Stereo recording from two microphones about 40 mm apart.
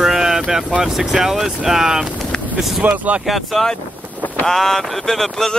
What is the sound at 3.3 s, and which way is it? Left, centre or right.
Speech, centre.